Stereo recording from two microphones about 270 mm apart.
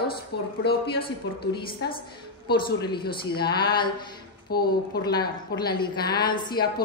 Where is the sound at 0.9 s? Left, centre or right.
Centre.